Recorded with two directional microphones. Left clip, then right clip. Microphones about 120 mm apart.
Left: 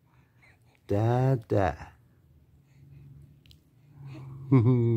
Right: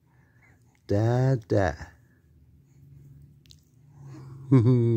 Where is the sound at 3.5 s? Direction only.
30° right (ahead or behind).